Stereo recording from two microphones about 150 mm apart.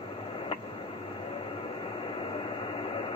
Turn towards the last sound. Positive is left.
turn(degrees=40)  # may be behind; listen again after turning